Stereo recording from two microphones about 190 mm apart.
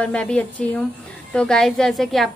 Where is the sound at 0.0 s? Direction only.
5° left (ahead or behind).